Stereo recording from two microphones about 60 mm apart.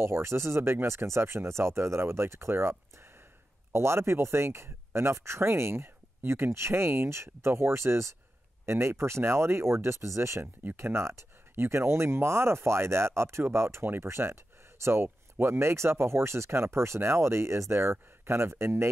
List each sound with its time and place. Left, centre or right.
0.0 s speech: right
10.4 s speech: right